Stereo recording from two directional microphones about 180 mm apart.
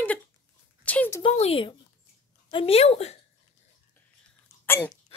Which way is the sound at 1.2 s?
35° left (ahead or behind).